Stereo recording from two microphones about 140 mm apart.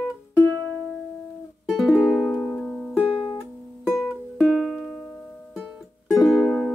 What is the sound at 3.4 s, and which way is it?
Music, 15° left (ahead or behind).